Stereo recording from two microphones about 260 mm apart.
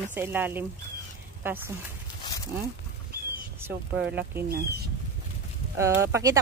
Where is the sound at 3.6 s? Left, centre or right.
Centre.